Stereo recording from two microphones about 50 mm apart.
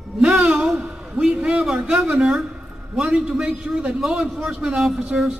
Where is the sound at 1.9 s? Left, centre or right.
Centre.